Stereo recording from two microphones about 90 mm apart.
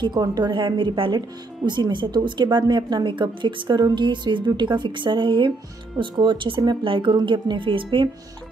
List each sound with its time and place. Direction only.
0.0 s a woman's voice: 55° right (ahead or behind); by 8.1 s 70° right (ahead or behind)